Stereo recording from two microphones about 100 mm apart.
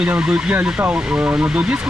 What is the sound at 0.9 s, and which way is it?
Speech, 10° right (ahead or behind).